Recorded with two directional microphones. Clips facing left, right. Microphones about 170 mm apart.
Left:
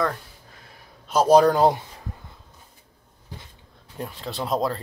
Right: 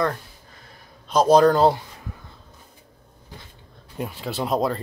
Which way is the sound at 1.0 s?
10° left (ahead or behind).